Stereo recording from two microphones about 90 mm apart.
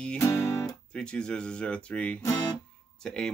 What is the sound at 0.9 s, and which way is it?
Speech, 10° left (ahead or behind).